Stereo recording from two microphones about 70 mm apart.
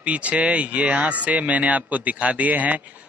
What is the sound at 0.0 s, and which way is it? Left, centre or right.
A man's voice, centre.